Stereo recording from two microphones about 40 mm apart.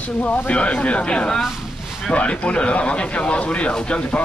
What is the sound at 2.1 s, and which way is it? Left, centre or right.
Speech, left.